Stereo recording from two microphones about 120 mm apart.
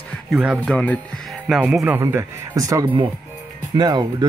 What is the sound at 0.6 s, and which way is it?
Speech, 10° left (ahead or behind).